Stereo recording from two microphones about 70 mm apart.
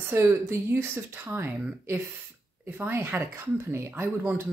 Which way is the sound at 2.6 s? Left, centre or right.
Right.